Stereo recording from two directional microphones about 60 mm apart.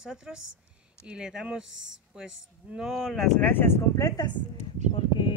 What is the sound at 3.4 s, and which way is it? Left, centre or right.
Speech, left.